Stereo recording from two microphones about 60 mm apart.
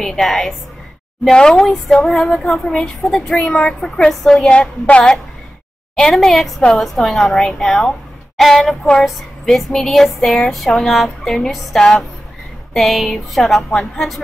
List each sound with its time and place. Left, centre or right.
0.0 s female singing: centre
4.3 s speech: centre
5.9 s speech: centre
7.3 s female singing: centre
8.4 s speech: centre